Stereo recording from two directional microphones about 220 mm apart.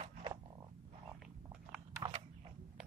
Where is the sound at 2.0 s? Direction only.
25° right (ahead or behind).